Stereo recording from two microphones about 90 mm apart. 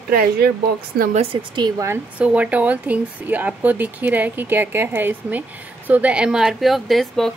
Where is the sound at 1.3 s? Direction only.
60° right (ahead or behind).